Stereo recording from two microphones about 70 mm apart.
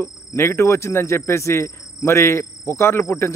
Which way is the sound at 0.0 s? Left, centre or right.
Left.